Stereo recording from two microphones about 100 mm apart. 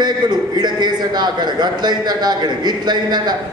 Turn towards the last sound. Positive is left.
turn(degrees=-45)  # may be behind; listen again after turning